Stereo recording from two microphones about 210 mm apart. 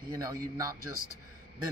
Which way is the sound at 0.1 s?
15° right (ahead or behind).